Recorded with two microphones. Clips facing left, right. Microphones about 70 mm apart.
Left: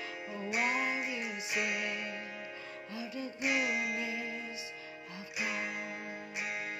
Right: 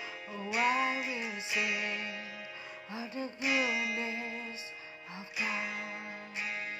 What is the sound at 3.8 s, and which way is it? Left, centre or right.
Music, right.